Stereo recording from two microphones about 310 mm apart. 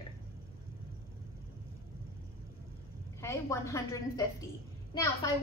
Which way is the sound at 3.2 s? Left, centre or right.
Centre.